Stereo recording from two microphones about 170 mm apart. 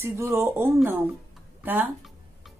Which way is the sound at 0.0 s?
15° right (ahead or behind).